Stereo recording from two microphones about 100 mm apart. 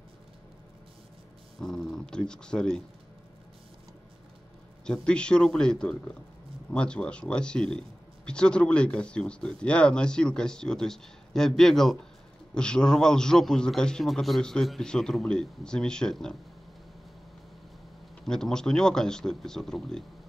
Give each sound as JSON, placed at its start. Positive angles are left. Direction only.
{"t": 1.6, "sound": "speech", "side_deg": 5}
{"t": 4.8, "sound": "speech", "side_deg": 10}
{"t": 18.2, "sound": "speech", "side_deg": 5}